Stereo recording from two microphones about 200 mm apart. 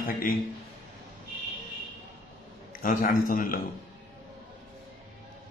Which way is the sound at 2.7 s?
40° left (ahead or behind).